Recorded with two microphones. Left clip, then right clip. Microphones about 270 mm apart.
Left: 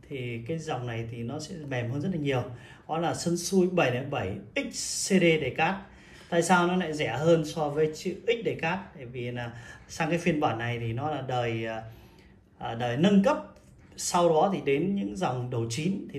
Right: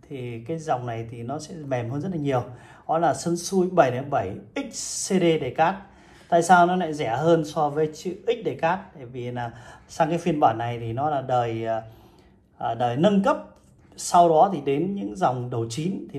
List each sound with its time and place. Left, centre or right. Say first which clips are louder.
0.2 s a man's voice: right 4 dB; right
4.7 s a woman's voice: right 1 dB; left
5.0 s a man's voice: right 2 dB; right